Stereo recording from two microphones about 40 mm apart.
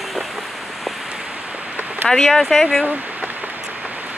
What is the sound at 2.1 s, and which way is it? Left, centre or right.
Speech, centre.